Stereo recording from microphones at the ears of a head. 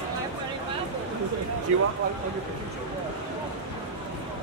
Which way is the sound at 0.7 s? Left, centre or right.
Right.